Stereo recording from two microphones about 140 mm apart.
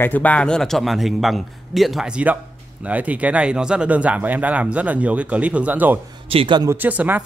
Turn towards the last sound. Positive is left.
turn(degrees=-10)  # may be behind; listen again after turning